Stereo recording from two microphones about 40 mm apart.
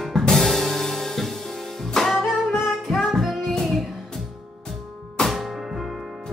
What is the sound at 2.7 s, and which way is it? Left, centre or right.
Music, centre.